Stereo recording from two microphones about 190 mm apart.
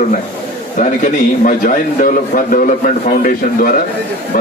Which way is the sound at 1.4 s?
45° left (ahead or behind).